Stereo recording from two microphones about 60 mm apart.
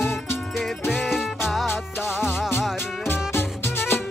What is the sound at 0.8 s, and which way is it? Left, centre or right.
Music, centre.